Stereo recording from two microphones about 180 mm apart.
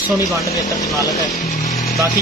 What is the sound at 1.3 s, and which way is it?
Speech, 40° left (ahead or behind).